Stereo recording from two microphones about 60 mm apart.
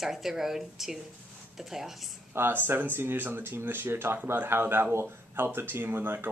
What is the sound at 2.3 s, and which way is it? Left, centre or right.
Speech, right.